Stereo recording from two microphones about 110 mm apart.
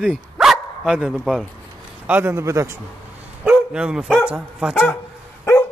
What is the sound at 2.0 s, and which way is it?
Speech, 20° right (ahead or behind).